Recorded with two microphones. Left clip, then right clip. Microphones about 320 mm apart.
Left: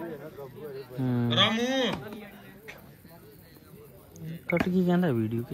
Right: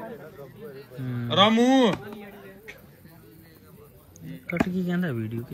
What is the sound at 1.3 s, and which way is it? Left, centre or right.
Speech, centre.